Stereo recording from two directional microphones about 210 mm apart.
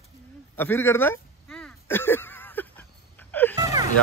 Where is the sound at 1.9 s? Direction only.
10° left (ahead or behind).